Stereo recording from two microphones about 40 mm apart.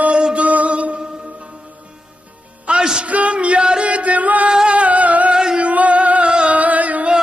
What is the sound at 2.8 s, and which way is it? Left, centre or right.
Music, right.